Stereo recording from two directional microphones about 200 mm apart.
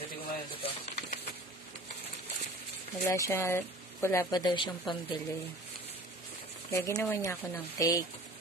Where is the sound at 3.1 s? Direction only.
15° left (ahead or behind).